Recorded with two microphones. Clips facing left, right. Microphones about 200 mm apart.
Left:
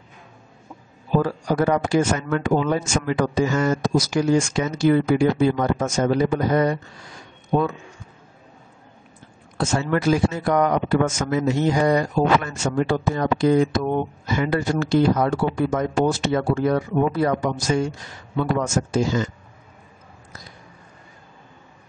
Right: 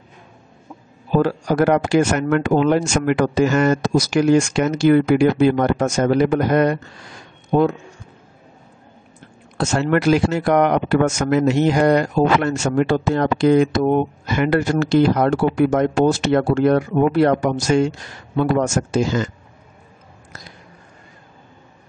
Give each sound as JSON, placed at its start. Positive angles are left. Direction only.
{"t": 1.2, "sound": "speech", "side_deg": -75}
{"t": 9.6, "sound": "speech", "side_deg": -70}